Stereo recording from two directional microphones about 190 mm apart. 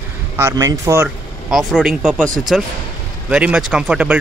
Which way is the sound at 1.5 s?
Centre (ahead or behind).